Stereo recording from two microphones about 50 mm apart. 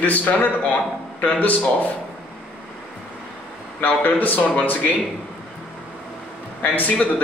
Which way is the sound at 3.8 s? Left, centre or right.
Left.